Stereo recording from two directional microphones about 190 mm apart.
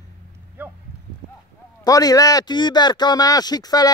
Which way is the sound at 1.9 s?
20° left (ahead or behind).